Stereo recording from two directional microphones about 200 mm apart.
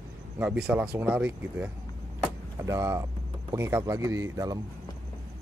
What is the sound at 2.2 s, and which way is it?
Vehicle, 15° right (ahead or behind).